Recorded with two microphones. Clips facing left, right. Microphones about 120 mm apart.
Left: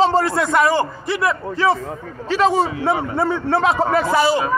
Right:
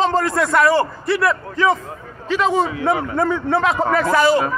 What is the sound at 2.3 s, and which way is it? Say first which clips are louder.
A man's voice: left 1 dB; 35° left (ahead or behind).